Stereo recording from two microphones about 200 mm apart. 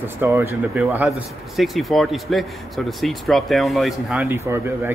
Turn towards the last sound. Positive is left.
turn(degrees=-10)  # may be behind; listen again after turning